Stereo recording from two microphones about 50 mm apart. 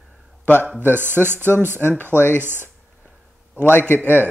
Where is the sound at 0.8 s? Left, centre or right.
Right.